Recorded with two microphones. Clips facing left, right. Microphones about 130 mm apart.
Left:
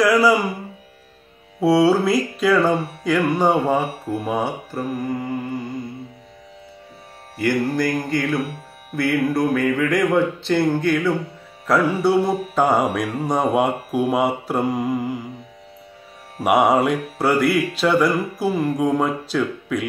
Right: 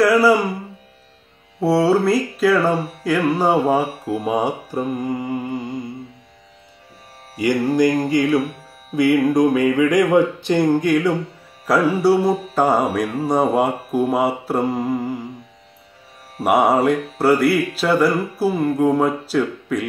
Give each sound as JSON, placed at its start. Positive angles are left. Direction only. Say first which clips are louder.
{"t": 0.0, "sound": "music", "louder": "right 2 dB", "side_deg": 0}
{"t": 1.6, "sound": "music", "louder": "even", "side_deg": 0}
{"t": 7.3, "sound": "music", "louder": "right 3 dB", "side_deg": -15}
{"t": 16.4, "sound": "music", "louder": "right 1 dB", "side_deg": 0}